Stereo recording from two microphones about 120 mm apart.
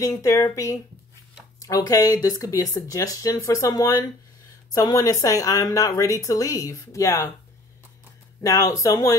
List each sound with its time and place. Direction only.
0.0 s speech: 25° left (ahead or behind)
8.4 s speech: 25° left (ahead or behind)